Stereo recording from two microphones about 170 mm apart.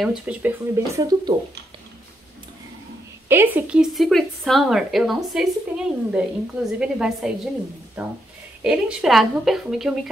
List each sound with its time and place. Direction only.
0.0 s speech: 5° right (ahead or behind); by 1.3 s 20° right (ahead or behind)
3.3 s speech: 10° right (ahead or behind)